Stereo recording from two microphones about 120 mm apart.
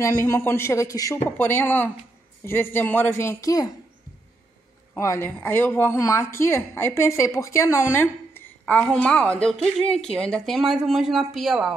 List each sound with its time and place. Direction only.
0.0 s a woman's voice: 25° left (ahead or behind)
1.4 s a woman's voice: 15° left (ahead or behind)
4.9 s a woman's voice: 25° left (ahead or behind); by 11.7 s centre (ahead or behind)